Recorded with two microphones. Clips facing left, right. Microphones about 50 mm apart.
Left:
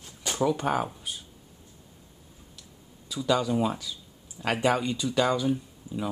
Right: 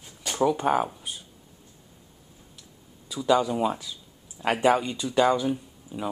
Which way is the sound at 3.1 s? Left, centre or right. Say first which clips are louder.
Right 3 dB; centre.